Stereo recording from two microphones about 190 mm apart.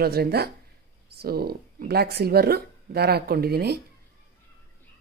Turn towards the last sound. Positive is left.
turn(degrees=-55)  # may be behind; listen again after turning